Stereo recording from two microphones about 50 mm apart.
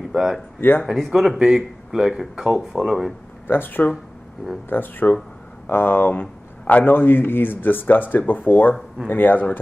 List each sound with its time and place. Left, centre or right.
0.1 s speech: centre
0.6 s speech: left
0.9 s speech: centre
3.4 s speech: left